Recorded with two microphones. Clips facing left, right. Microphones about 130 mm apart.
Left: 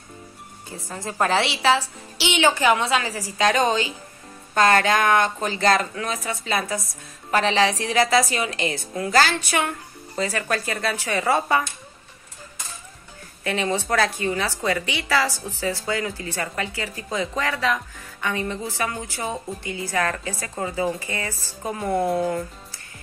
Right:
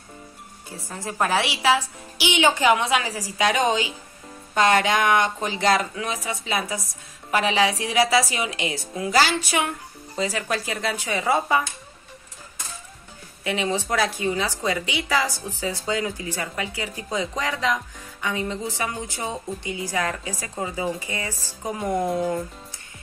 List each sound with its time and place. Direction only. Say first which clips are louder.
1.1 s speech: left 1 dB; 10° right (ahead or behind)
13.4 s speech: left 1 dB; 15° right (ahead or behind)
21.9 s speech: left 2 dB; 5° left (ahead or behind)